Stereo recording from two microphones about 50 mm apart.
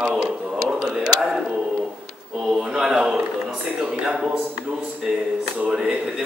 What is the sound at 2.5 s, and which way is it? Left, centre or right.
Speech, centre.